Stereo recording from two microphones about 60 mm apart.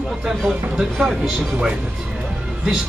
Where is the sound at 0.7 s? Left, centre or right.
Centre.